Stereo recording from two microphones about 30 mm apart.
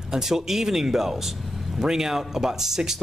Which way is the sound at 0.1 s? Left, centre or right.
Centre.